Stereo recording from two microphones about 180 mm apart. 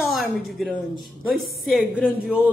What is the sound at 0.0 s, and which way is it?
A woman's voice, centre (ahead or behind).